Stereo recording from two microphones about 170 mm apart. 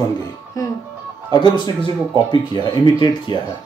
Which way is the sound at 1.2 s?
25° left (ahead or behind).